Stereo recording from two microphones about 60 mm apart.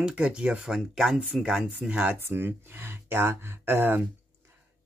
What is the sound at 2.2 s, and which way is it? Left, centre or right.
Speech, right.